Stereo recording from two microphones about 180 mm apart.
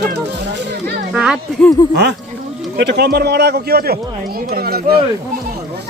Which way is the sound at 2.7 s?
65° right (ahead or behind).